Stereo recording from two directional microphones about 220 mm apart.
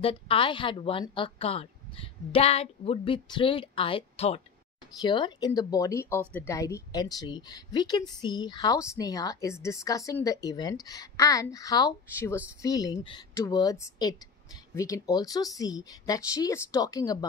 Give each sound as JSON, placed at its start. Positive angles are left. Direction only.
{"t": 0.0, "sound": "a woman's voice", "side_deg": 25}